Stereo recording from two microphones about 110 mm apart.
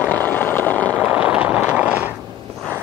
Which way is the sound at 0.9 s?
15° right (ahead or behind).